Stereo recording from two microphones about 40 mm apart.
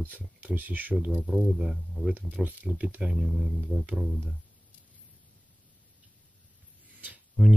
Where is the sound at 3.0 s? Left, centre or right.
Right.